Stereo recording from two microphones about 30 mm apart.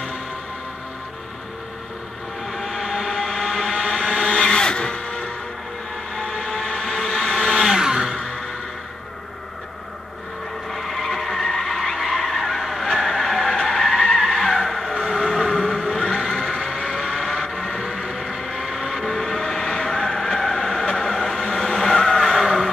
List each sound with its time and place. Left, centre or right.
2.5 s vehicle: centre
3.1 s vehicle: centre
3.5 s a sound: centre
3.8 s music: centre; by 5.3 s left
6.1 s vehicle: left
7.6 s a sound: centre
8.2 s music: left
10.7 s skidding: centre
12.1 s a sound: centre
12.5 s honk: centre
12.8 s a sound: centre
13.6 s skidding: centre
15.1 s vehicle: centre
15.5 s vehicle: centre